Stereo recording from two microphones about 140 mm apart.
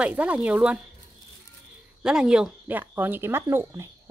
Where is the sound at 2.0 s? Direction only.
5° right (ahead or behind).